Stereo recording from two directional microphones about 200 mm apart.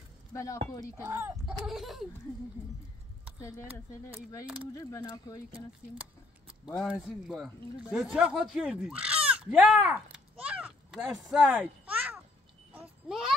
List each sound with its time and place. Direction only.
0.3 s speech: 15° left (ahead or behind)
1.0 s speech: 10° right (ahead or behind)
4.7 s speech: 15° left (ahead or behind)
6.8 s speech: 5° right (ahead or behind)
12.7 s a sound: 5° right (ahead or behind)